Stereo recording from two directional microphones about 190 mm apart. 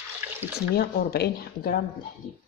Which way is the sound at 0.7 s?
55° left (ahead or behind).